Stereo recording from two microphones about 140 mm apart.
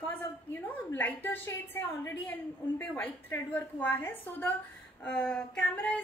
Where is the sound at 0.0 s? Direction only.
15° left (ahead or behind).